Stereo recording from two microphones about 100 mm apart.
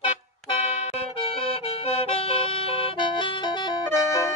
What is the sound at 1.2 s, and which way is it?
Music, 80° left.